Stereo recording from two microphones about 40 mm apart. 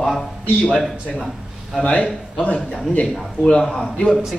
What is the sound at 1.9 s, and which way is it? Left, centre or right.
Speech, left.